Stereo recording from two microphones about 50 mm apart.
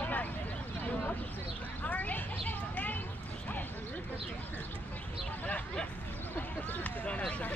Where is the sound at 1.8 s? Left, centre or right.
Left.